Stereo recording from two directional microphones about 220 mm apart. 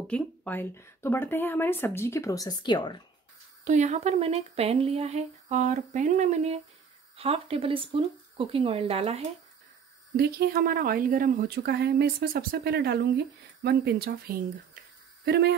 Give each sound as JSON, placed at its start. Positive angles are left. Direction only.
{"t": 0.0, "sound": "speech", "side_deg": 5}
{"t": 3.6, "sound": "speech", "side_deg": -30}
{"t": 10.1, "sound": "speech", "side_deg": -45}